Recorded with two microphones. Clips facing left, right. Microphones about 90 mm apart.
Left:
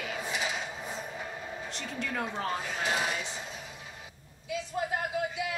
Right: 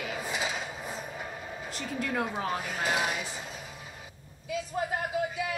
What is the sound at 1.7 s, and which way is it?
A woman's voice, 5° right (ahead or behind).